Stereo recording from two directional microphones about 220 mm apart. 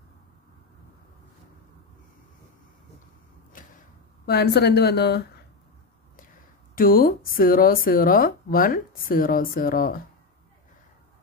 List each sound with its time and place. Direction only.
4.3 s a woman's voice: 45° left (ahead or behind)